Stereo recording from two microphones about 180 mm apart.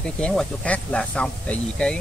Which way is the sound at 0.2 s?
5° left (ahead or behind).